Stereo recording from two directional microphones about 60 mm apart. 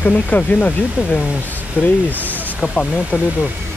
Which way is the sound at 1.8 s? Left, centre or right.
Left.